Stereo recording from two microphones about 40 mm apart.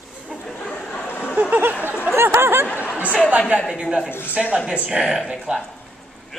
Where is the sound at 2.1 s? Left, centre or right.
Right.